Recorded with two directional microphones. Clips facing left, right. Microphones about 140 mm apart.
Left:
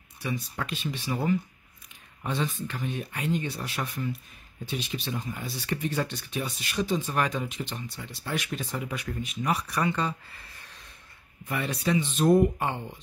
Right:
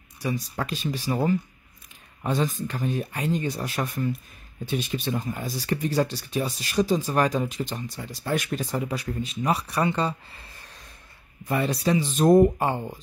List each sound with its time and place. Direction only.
0.2 s speech: 35° right (ahead or behind)